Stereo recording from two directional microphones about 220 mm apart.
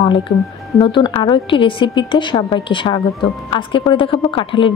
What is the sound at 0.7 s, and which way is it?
A woman's voice, 20° left (ahead or behind).